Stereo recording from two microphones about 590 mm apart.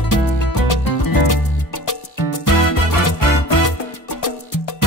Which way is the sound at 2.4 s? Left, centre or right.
Left.